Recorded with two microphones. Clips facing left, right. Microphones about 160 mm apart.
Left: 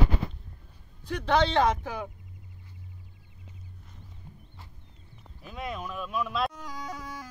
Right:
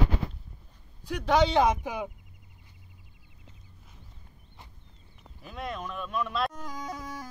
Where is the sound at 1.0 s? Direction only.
10° right (ahead or behind).